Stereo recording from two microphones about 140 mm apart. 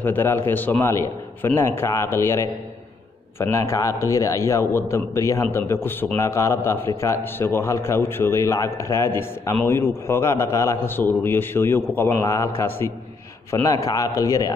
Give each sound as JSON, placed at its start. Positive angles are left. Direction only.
{"t": 0.0, "sound": "a man's voice", "side_deg": 15}